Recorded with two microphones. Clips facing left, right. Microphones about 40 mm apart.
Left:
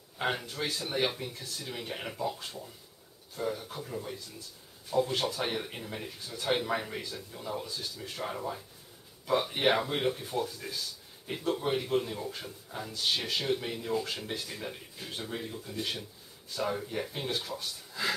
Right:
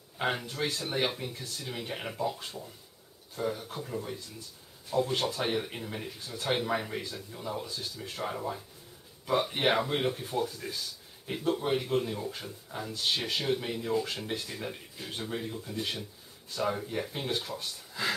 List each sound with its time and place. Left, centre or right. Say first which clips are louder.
0.2 s speech: right 1 dB; centre